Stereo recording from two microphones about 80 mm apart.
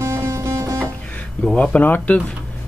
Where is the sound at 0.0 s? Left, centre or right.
Right.